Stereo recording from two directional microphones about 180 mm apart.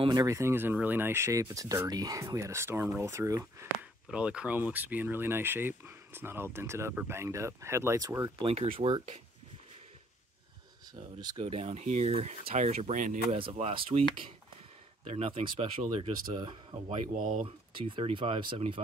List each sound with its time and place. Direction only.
0.0 s speech: 20° right (ahead or behind)
4.1 s speech: 5° right (ahead or behind)
8.5 s speech: 30° right (ahead or behind)
11.1 s speech: 25° right (ahead or behind)
11.4 s speech: 35° right (ahead or behind)
13.4 s speech: 35° right (ahead or behind)
15.0 s speech: 35° right (ahead or behind)